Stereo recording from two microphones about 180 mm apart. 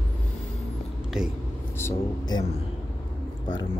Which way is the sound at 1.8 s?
20° left (ahead or behind).